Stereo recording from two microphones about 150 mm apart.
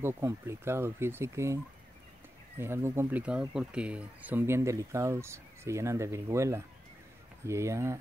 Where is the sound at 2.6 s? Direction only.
15° right (ahead or behind).